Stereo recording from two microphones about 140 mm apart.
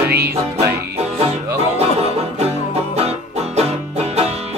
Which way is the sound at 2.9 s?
50° right (ahead or behind).